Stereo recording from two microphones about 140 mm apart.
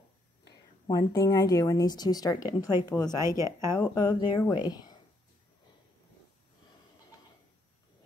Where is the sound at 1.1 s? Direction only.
25° left (ahead or behind).